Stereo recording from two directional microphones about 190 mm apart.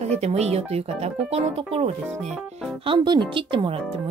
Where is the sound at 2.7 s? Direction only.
25° right (ahead or behind).